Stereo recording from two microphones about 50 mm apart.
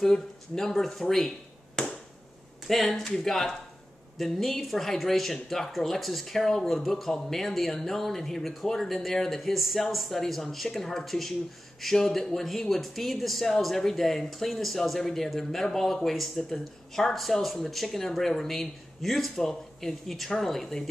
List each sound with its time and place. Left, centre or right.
0.1 s speech: centre
1.8 s chop: centre
2.6 s speech: centre